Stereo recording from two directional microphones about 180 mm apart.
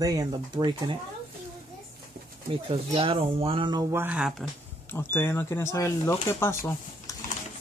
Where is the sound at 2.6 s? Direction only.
30° right (ahead or behind).